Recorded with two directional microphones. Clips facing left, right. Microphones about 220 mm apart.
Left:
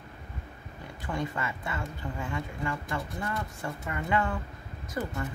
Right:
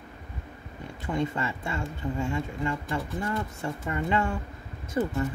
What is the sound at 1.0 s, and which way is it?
Speech, 25° right (ahead or behind).